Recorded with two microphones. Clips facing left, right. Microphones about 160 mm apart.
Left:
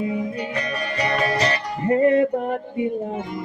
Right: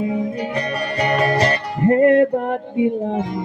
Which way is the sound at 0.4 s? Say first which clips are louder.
Right 4 dB; 35° right (ahead or behind).